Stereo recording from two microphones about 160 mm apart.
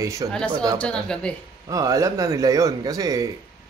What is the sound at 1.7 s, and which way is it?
A man's voice, 20° right (ahead or behind).